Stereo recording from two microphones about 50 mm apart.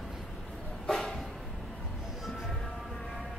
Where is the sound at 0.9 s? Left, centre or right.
Centre.